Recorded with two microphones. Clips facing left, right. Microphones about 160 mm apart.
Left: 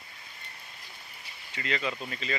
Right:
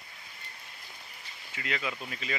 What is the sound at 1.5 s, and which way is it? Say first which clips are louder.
Speech: left 3 dB; 5° right (ahead or behind).